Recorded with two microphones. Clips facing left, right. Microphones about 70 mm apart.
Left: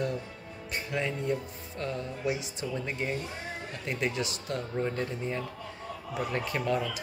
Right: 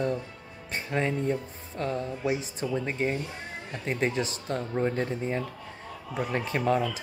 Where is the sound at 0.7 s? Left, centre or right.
Right.